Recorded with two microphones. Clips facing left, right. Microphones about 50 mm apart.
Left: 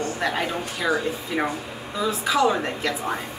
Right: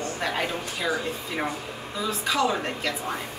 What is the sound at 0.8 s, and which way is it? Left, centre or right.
A woman's voice, centre.